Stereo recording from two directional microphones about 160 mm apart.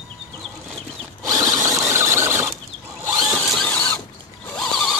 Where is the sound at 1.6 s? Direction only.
15° right (ahead or behind).